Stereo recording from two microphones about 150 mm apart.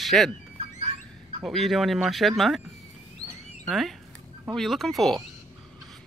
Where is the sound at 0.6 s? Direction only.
40° right (ahead or behind).